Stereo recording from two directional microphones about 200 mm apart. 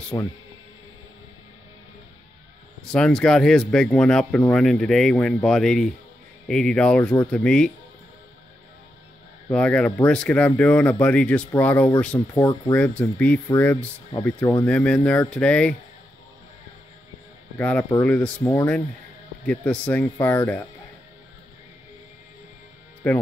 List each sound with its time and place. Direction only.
0.1 s speech: 20° left (ahead or behind)
2.9 s speech: 5° left (ahead or behind)
9.5 s speech: 5° left (ahead or behind)
12.4 s speech: 20° left (ahead or behind)
12.7 s speech: 5° left (ahead or behind)
17.6 s speech: 10° left (ahead or behind)
23.0 s speech: 5° left (ahead or behind)